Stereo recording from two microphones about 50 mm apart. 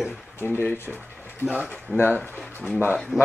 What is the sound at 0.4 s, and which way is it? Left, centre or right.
Speech, left.